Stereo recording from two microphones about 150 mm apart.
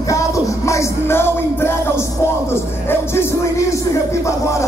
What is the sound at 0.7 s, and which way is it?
Music, 15° left (ahead or behind).